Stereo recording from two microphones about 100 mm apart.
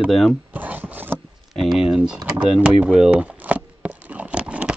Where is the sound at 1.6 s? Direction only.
5° right (ahead or behind).